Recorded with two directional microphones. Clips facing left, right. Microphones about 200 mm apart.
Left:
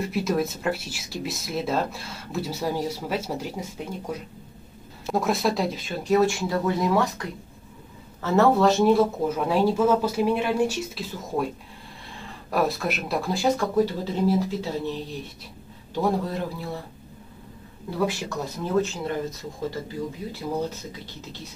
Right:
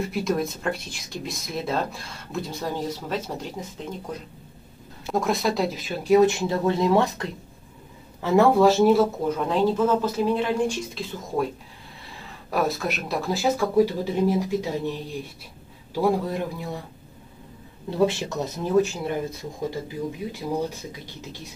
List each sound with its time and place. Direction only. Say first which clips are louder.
0.0 s speech: even; centre (ahead or behind)
6.2 s speech: right 2 dB; 25° right (ahead or behind)
8.2 s speech: right 2 dB; 15° right (ahead or behind)
9.5 s speech: left 1 dB; 10° left (ahead or behind)
12.4 s speech: even; centre (ahead or behind)
17.8 s speech: right 4 dB; 25° right (ahead or behind)